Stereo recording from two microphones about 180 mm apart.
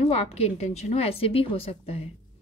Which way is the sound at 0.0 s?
35° left (ahead or behind).